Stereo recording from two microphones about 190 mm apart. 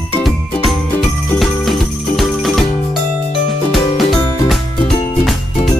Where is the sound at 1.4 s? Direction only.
Centre (ahead or behind).